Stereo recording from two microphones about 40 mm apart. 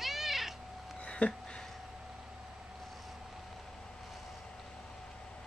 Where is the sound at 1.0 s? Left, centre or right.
Left.